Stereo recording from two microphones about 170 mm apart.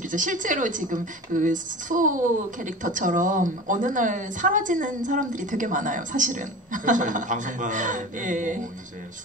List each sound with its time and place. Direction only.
0.1 s a woman's voice: 50° right (ahead or behind)